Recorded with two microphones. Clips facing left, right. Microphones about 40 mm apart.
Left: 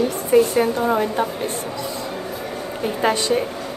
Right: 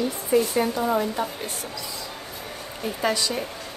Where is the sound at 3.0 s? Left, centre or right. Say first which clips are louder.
Left 4 dB; left.